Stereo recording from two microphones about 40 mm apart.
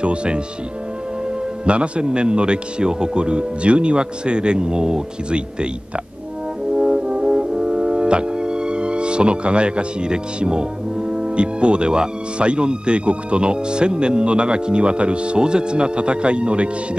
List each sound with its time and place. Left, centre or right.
0.0 s speech: right
1.7 s speech: right
6.7 s brass instrument: right